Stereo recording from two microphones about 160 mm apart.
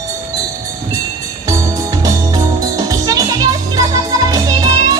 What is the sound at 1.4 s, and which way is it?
Music, 20° right (ahead or behind).